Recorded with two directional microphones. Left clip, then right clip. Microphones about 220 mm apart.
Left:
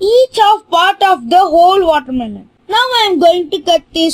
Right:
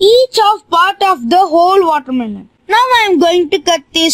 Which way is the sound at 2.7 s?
45° right (ahead or behind).